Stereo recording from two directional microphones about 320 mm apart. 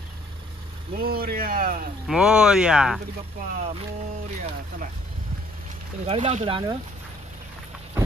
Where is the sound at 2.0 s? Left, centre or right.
Centre.